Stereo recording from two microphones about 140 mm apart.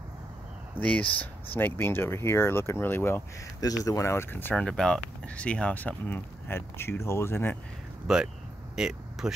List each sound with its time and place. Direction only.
0.7 s speech: 10° left (ahead or behind)
8.1 s speech: centre (ahead or behind)